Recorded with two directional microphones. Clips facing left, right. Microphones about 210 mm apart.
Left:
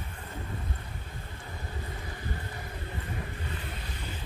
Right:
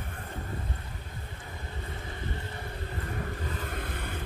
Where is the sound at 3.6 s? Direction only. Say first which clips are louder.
Right 4 dB; 55° right (ahead or behind).